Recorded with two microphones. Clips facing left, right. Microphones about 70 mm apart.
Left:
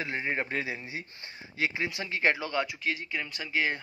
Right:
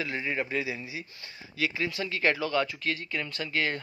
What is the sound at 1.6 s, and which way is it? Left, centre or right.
Speech, left.